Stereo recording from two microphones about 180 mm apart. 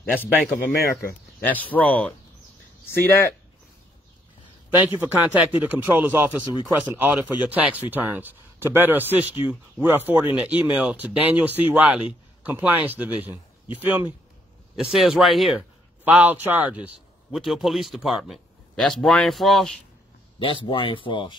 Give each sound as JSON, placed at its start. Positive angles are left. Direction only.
{"t": 0.1, "sound": "speech", "side_deg": 10}
{"t": 0.4, "sound": "a man's voice", "side_deg": 0}
{"t": 0.7, "sound": "speech", "side_deg": 55}
{"t": 1.4, "sound": "speech", "side_deg": 10}
{"t": 4.7, "sound": "a man's voice", "side_deg": -10}
{"t": 20.6, "sound": "speech", "side_deg": 30}